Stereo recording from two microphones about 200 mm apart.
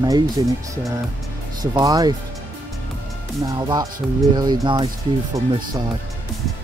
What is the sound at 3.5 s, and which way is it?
Speech, 20° right (ahead or behind).